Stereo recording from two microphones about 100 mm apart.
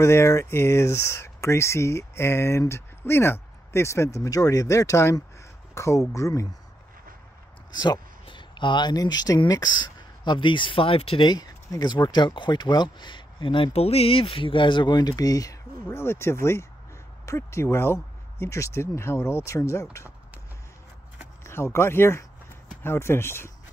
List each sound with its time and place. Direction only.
0.0 s speech: 30° left (ahead or behind)
7.7 s speech: 45° left (ahead or behind); by 11.2 s 70° left (ahead or behind)
11.2 s speech: 40° left (ahead or behind)
21.5 s speech: 25° left (ahead or behind)